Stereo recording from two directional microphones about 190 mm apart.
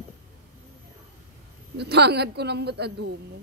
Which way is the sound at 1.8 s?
60° right (ahead or behind).